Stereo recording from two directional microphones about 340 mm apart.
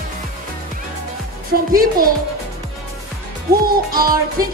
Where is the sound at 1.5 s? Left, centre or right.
Right.